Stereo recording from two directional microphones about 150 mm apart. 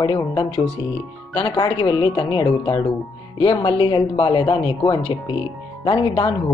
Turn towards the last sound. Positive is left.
turn(degrees=35)  # may be behind; listen again after turning